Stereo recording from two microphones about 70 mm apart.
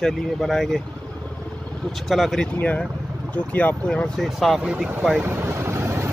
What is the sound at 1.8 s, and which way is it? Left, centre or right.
Speech, centre.